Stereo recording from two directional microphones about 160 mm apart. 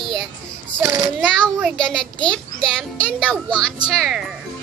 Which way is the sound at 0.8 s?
20° right (ahead or behind).